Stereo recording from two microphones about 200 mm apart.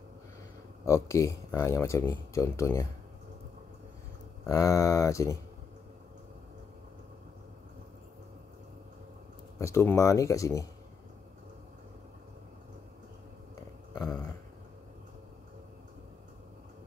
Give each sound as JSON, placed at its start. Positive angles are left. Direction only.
{"t": 0.8, "sound": "a man's voice", "side_deg": 15}
{"t": 4.5, "sound": "a man's voice", "side_deg": 15}
{"t": 9.6, "sound": "a man's voice", "side_deg": 15}
{"t": 13.9, "sound": "a sound", "side_deg": 20}